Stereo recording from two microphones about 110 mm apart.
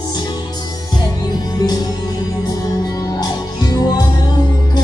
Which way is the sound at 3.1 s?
35° left (ahead or behind).